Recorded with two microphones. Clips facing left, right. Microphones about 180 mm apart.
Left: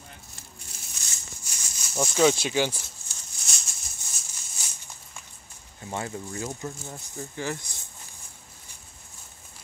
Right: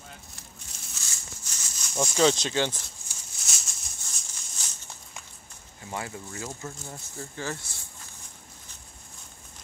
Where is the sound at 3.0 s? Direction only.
15° right (ahead or behind).